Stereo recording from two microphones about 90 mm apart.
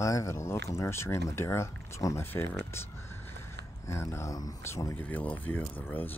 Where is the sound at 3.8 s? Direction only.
30° left (ahead or behind).